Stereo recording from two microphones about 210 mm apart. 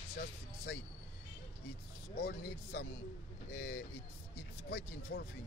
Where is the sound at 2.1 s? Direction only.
50° left (ahead or behind).